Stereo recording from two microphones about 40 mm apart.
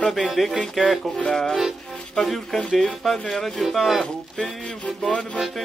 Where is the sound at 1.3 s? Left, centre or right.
Centre.